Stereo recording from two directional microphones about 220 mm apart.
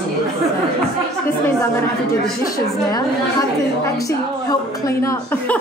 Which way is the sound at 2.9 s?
15° left (ahead or behind).